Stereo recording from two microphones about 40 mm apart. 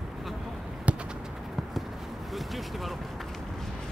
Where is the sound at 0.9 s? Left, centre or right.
Right.